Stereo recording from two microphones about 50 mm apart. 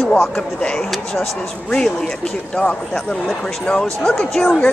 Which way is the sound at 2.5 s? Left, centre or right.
Centre.